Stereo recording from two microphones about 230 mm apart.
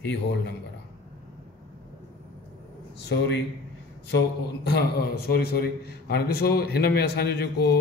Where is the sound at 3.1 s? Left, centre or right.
Left.